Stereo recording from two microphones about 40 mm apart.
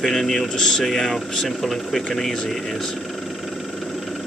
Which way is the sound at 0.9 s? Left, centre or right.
Centre.